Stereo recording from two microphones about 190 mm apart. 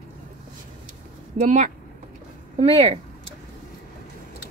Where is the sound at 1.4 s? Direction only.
40° right (ahead or behind).